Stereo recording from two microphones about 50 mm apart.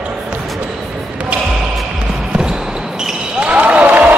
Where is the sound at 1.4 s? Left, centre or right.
Centre.